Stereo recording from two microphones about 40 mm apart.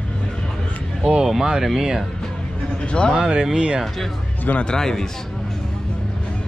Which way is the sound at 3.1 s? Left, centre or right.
Centre.